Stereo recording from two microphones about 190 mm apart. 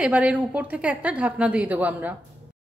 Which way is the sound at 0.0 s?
5° right (ahead or behind).